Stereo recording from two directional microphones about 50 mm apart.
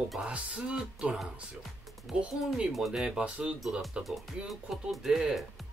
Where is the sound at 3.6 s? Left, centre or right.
Centre.